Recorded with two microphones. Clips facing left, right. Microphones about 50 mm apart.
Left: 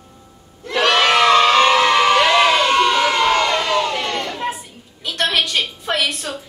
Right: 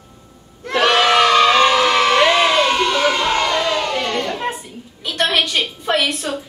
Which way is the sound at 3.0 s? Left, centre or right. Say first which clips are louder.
Left 1 dB; centre.